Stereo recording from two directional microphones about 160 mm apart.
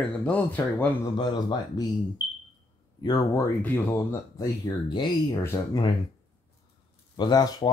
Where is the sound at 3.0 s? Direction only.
25° left (ahead or behind).